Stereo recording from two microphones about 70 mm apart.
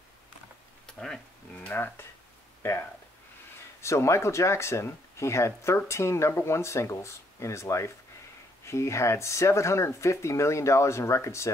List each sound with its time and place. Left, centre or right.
0.9 s a sound: centre
1.7 s speech: left
3.8 s speech: left